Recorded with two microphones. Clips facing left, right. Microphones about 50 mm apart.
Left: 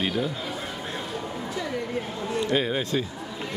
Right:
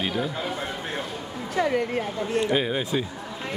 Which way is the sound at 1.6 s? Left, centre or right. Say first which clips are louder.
Right 10 dB; right.